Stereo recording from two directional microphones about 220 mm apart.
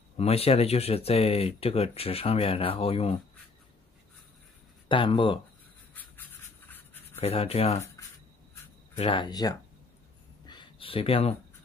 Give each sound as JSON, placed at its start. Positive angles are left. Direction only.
{"t": 0.2, "sound": "speech", "side_deg": 25}
{"t": 4.8, "sound": "speech", "side_deg": 25}
{"t": 5.9, "sound": "rub", "side_deg": 10}
{"t": 7.2, "sound": "speech", "side_deg": 25}
{"t": 8.9, "sound": "speech", "side_deg": 25}
{"t": 10.4, "sound": "a sound", "side_deg": 20}